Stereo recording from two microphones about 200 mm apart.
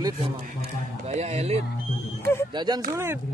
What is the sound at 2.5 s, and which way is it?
Speech, 20° right (ahead or behind).